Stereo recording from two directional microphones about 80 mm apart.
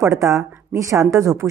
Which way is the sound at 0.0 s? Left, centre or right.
Right.